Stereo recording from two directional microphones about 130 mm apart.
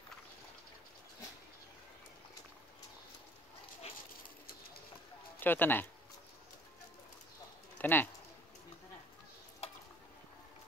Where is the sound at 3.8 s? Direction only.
55° left (ahead or behind).